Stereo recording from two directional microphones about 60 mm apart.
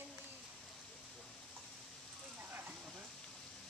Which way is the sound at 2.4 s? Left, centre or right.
Right.